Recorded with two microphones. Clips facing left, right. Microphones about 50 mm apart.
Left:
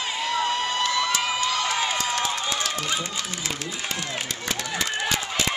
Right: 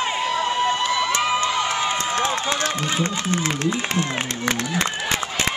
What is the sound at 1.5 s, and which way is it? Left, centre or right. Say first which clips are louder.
Crowd: right 3 dB; right.